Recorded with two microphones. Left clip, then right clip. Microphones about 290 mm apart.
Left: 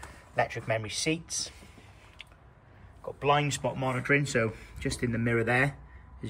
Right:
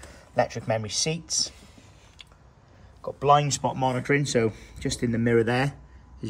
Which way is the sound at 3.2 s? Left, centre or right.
Centre.